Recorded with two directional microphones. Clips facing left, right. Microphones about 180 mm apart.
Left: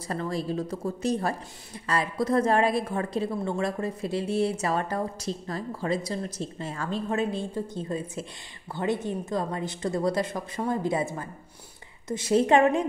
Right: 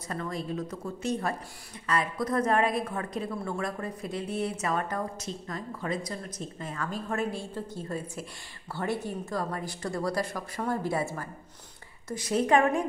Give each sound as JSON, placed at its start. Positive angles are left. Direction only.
{"t": 0.1, "sound": "a woman's voice", "side_deg": 35}